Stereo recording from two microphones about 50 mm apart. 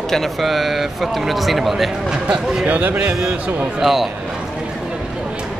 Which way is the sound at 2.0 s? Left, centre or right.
Centre.